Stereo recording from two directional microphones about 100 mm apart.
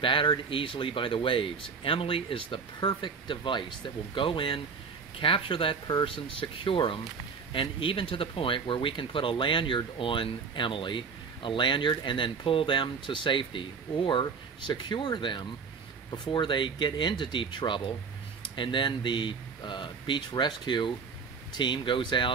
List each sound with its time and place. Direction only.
0.0 s speech: 55° left (ahead or behind)